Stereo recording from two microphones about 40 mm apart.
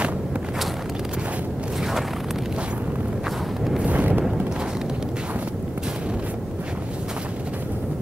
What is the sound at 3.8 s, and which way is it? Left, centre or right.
Wind noise, right.